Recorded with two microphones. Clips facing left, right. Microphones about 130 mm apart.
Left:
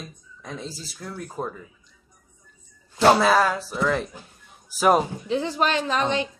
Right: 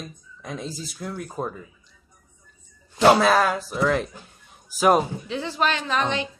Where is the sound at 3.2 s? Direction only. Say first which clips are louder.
Even; 10° left (ahead or behind).